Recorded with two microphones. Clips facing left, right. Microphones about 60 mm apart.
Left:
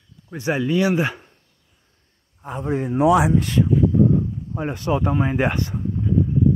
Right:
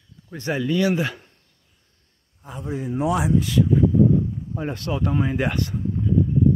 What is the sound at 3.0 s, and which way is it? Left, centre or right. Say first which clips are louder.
Speech: left 7 dB; left.